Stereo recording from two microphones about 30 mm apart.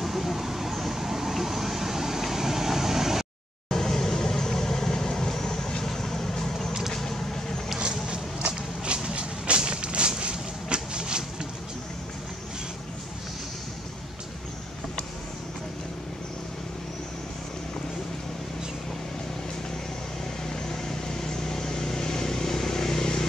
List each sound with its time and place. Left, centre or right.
0.0 s vehicle: centre
3.7 s vehicle: centre
7.8 s a sound: right
9.1 s vehicle: right
20.6 s vehicle: centre